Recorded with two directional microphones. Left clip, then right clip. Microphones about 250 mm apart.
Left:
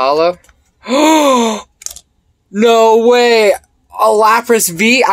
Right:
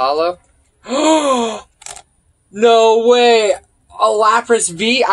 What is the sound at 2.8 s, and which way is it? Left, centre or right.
Speech, centre.